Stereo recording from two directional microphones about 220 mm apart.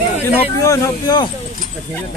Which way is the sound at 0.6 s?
15° left (ahead or behind).